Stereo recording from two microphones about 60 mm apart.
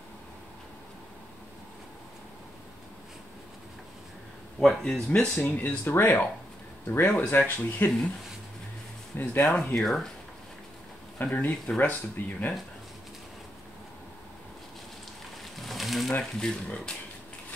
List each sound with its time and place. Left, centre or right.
4.6 s speech: centre
5.6 s speech: left
9.1 s speech: left
9.8 s speech: centre
11.1 s speech: left
15.5 s a sound: centre
16.1 s speech: centre